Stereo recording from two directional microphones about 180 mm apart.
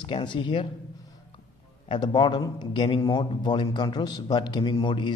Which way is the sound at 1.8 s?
25° left (ahead or behind).